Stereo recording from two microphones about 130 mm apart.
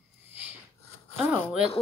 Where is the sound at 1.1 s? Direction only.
10° right (ahead or behind).